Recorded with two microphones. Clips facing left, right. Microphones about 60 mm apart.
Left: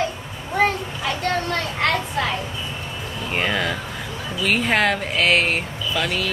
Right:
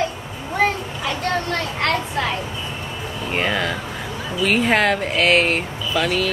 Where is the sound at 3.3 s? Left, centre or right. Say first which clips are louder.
Right 1 dB; centre.